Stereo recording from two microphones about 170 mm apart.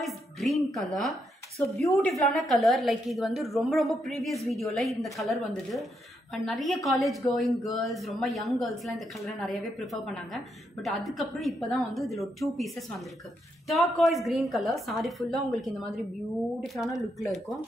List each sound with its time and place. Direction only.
0.0 s music: centre (ahead or behind)
1.8 s a woman's voice: 5° left (ahead or behind)